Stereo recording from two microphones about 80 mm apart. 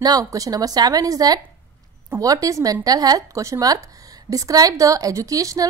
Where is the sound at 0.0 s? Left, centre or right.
Right.